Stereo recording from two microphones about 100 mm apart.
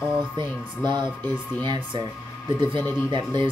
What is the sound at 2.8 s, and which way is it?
Speech, 20° left (ahead or behind).